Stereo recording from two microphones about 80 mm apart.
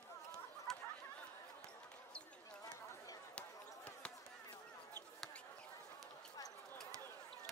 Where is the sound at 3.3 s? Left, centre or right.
Centre.